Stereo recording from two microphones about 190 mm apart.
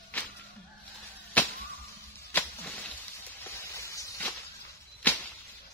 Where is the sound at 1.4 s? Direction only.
10° left (ahead or behind).